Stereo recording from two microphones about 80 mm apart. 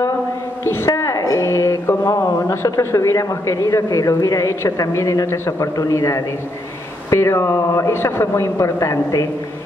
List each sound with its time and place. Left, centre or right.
0.7 s a man's voice: left